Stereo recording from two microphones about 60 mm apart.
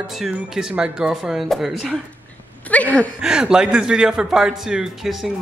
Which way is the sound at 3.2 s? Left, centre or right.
Centre.